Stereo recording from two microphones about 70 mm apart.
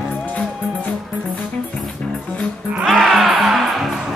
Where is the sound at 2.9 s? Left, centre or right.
Centre.